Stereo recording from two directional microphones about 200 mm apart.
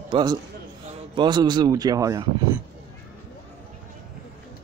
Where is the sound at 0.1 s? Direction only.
20° right (ahead or behind).